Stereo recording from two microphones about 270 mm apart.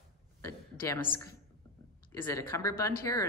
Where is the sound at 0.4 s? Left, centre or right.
Centre.